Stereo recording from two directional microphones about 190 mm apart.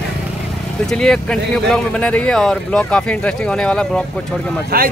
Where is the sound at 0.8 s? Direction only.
5° left (ahead or behind).